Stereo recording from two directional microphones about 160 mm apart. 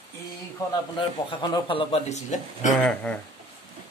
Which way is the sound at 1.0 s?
30° left (ahead or behind).